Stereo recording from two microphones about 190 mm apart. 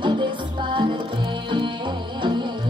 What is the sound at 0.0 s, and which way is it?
Music, 25° right (ahead or behind).